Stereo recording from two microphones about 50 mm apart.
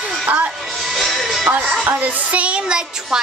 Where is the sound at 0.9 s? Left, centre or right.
Centre.